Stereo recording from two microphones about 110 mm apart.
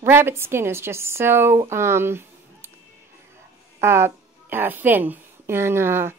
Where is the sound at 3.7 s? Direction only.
20° right (ahead or behind).